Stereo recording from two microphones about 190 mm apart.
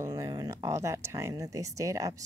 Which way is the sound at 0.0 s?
20° right (ahead or behind).